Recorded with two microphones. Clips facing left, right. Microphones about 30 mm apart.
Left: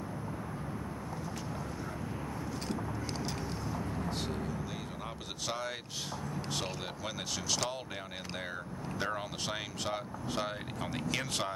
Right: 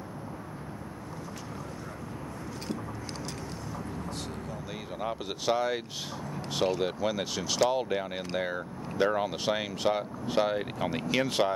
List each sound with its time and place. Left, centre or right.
5.0 s speech: centre